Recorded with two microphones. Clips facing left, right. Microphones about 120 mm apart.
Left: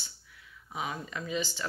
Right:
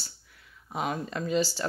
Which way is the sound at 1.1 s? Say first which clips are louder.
Right 9 dB; 40° right (ahead or behind).